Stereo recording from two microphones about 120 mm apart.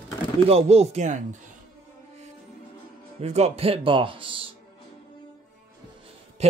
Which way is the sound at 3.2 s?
65° right (ahead or behind).